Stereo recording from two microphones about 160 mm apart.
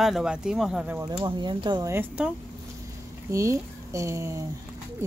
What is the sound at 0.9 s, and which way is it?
Speech, 25° right (ahead or behind).